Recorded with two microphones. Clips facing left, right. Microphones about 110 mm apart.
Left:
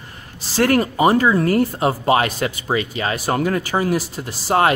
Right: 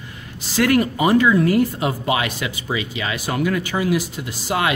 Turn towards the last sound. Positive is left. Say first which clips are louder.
# left 5 dB
turn(degrees=40)  # may be behind; listen again after turning